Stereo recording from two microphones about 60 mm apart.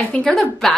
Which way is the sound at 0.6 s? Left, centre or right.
Centre.